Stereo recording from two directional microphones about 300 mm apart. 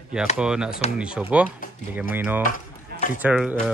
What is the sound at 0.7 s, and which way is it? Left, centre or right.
Speech, left.